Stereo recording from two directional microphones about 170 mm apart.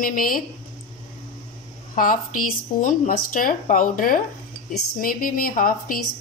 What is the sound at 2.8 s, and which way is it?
A woman's voice, 55° left (ahead or behind).